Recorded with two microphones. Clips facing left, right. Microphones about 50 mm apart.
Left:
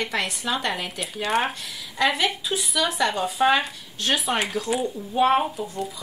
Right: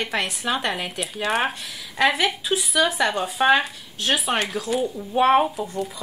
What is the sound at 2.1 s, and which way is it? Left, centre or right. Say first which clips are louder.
Speech: right 2 dB; right.